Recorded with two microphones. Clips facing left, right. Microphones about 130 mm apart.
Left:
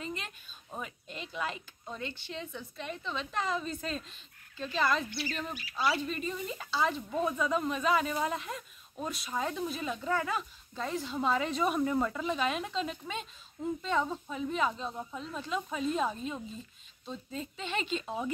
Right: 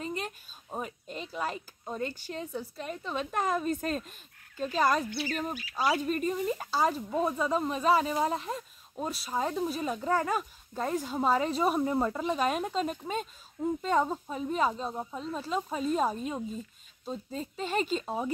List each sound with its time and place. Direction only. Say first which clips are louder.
0.0 s speech: right 5 dB; 40° right (ahead or behind)